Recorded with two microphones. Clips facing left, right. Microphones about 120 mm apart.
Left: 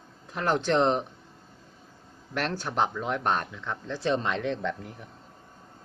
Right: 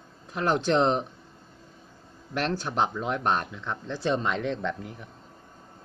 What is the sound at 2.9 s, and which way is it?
Speech, 10° right (ahead or behind).